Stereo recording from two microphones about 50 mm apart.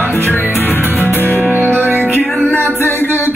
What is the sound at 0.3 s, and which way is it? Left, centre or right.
Music, left.